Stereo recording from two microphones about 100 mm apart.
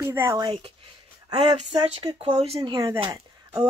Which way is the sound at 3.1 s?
35° right (ahead or behind).